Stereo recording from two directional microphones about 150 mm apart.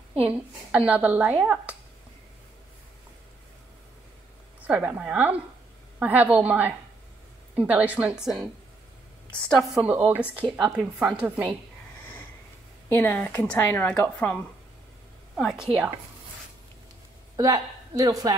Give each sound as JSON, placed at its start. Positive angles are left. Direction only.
{"t": 0.2, "sound": "a woman's voice", "side_deg": -10}
{"t": 4.6, "sound": "a woman's voice", "side_deg": -10}
{"t": 9.8, "sound": "a woman's voice", "side_deg": -10}
{"t": 12.9, "sound": "speech", "side_deg": 15}
{"t": 15.3, "sound": "a woman's voice", "side_deg": 0}
{"t": 17.4, "sound": "a woman's voice", "side_deg": -25}